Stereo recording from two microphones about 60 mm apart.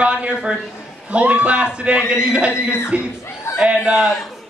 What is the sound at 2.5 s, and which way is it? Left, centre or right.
Music, left.